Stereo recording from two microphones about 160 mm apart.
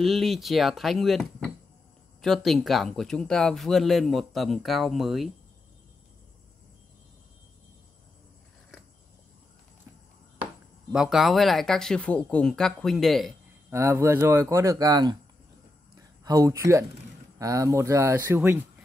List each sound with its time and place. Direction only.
0.0 s speech: centre (ahead or behind)
10.4 s speech: 5° right (ahead or behind)
13.7 s speech: 20° right (ahead or behind)
16.3 s speech: 20° right (ahead or behind)